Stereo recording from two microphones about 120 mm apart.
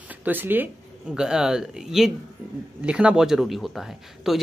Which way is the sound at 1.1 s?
5° right (ahead or behind).